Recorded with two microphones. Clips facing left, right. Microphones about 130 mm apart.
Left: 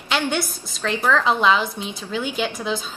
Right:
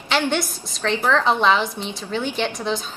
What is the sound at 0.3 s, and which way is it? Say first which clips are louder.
A woman's voice: right 1 dB; centre (ahead or behind).